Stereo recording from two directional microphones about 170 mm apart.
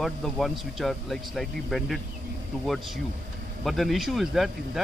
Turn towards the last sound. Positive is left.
turn(degrees=0)  # may be behind; listen again after turning